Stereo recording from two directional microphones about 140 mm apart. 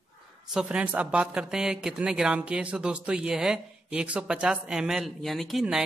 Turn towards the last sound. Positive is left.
turn(degrees=0)  # may be behind; listen again after turning